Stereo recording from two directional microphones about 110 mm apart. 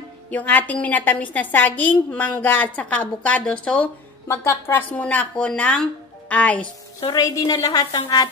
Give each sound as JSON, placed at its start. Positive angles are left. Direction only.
{"t": 0.3, "sound": "speech", "side_deg": 15}
{"t": 4.3, "sound": "speech", "side_deg": 25}
{"t": 7.0, "sound": "a woman's voice", "side_deg": 35}